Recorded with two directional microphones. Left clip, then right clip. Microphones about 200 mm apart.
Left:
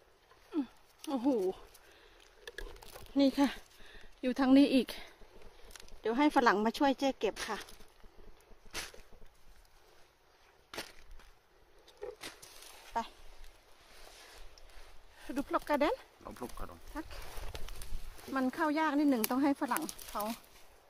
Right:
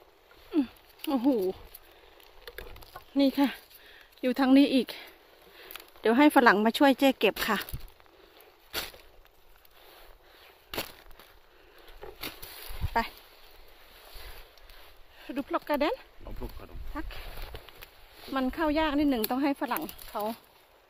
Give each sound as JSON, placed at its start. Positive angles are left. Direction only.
{"t": 0.5, "sound": "a sound", "side_deg": -15}
{"t": 3.2, "sound": "speech", "side_deg": -15}
{"t": 5.7, "sound": "speech", "side_deg": -20}
{"t": 12.9, "sound": "speech", "side_deg": -30}
{"t": 15.2, "sound": "speech", "side_deg": -5}
{"t": 16.3, "sound": "speech", "side_deg": 35}
{"t": 16.9, "sound": "speech", "side_deg": -10}
{"t": 18.3, "sound": "speech", "side_deg": -10}